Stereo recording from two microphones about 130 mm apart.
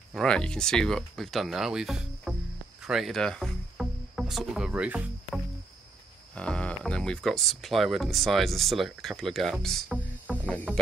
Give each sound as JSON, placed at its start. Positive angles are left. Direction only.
{"t": 0.1, "sound": "speech", "side_deg": 5}
{"t": 2.8, "sound": "music", "side_deg": -5}
{"t": 6.3, "sound": "speech", "side_deg": 10}